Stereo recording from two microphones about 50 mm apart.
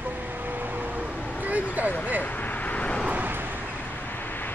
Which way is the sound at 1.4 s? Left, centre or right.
Right.